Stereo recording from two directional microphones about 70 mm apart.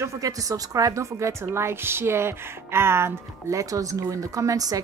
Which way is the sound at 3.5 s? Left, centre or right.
Right.